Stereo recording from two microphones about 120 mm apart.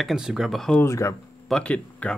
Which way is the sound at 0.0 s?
5° right (ahead or behind).